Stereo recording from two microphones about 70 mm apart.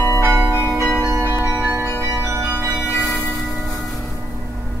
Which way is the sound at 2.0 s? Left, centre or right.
Right.